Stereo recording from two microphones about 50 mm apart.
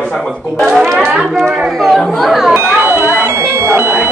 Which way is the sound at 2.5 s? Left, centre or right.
Right.